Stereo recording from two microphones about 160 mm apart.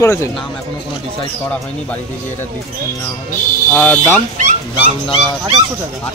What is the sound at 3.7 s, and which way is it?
Speech, 10° left (ahead or behind).